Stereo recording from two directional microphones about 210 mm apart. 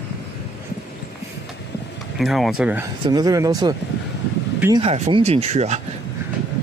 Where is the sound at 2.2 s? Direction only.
Centre (ahead or behind).